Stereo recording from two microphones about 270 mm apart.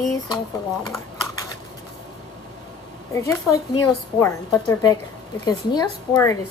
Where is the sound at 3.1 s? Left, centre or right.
Centre.